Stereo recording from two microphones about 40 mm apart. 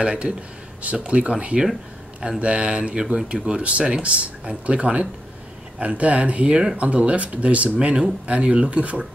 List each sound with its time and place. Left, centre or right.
0.0 s speech: right